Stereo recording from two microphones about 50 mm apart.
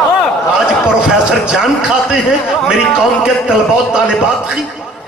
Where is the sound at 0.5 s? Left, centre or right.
Centre.